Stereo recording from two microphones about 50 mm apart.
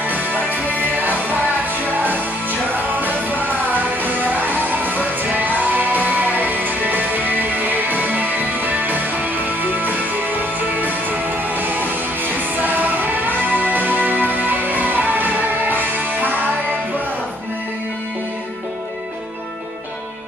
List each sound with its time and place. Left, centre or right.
0.0 s music: right